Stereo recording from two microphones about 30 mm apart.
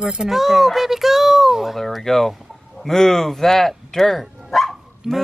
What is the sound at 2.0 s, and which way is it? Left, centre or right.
Speech, centre.